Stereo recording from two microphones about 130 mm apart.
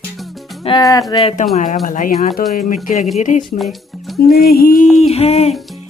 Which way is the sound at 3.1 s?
70° left (ahead or behind).